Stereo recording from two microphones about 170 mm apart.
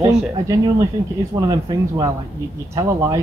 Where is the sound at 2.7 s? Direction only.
20° right (ahead or behind).